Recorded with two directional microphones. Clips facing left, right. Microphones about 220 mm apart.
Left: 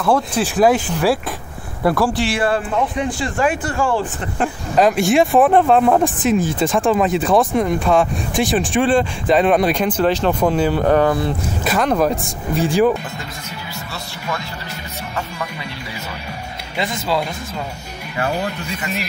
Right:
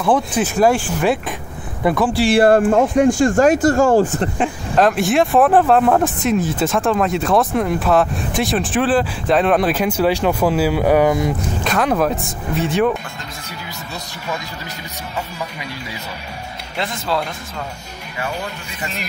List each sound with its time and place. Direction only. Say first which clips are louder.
0.9 s speech: even; centre (ahead or behind)
2.2 s speech: right 7 dB; 45° right (ahead or behind)
4.4 s speech: left 2 dB; centre (ahead or behind)
11.6 s speech: left 1 dB; centre (ahead or behind)
16.7 s speech: left 1 dB; 5° left (ahead or behind)